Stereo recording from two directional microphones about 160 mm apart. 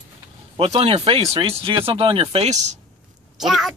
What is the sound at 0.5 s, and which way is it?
Speech, 35° right (ahead or behind).